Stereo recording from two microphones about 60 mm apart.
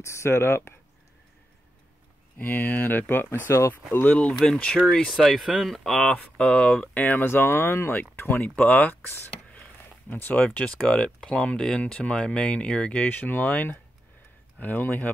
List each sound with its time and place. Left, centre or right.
0.0 s speech: left
2.3 s speech: left
3.7 s speech: left
4.1 s speech: centre
6.1 s speech: centre
7.2 s speech: left
8.5 s speech: left
10.0 s speech: left
10.3 s speech: left
10.9 s speech: centre
13.1 s speech: left
14.6 s speech: left